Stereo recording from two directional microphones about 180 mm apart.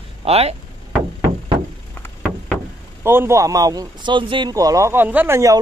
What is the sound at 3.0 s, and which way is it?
Speech, 15° right (ahead or behind).